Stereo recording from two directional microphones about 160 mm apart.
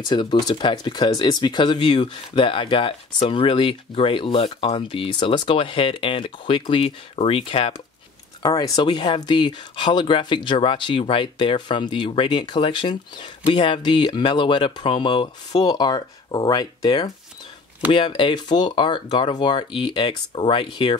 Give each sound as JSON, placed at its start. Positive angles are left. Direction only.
{"t": 0.0, "sound": "speech", "side_deg": 30}